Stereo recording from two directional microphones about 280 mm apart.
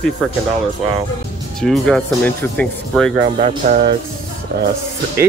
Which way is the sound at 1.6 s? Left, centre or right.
Centre.